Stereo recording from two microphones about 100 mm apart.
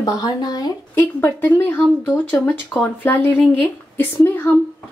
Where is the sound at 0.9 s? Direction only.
20° left (ahead or behind).